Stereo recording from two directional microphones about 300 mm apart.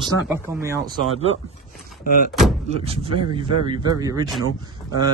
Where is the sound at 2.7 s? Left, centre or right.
Centre.